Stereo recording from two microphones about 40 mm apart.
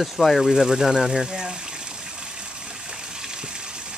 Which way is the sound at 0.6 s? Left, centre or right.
Centre.